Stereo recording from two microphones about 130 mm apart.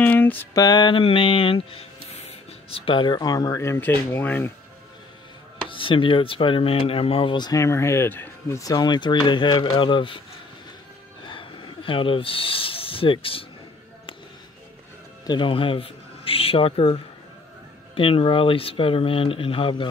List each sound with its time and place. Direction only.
0.0 s a sound: 15° left (ahead or behind)
0.6 s speech: 35° left (ahead or behind); by 4.5 s 15° left (ahead or behind)
5.7 s speech: 40° left (ahead or behind)
11.2 s speech: 40° left (ahead or behind)
15.2 s speech: 40° left (ahead or behind)